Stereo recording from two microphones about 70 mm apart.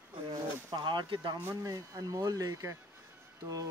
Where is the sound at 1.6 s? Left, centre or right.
Right.